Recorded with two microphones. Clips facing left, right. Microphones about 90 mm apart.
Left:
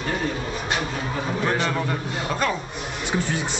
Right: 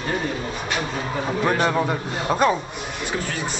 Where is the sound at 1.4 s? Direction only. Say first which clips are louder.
Right 4 dB; 15° right (ahead or behind).